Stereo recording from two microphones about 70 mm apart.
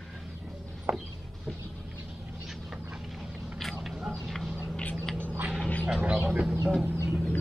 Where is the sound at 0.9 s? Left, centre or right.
Right.